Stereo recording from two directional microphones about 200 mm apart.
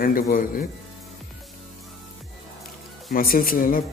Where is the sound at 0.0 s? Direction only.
45° left (ahead or behind).